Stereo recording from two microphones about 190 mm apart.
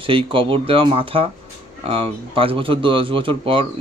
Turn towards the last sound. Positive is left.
turn(degrees=-30)  # may be behind; listen again after turning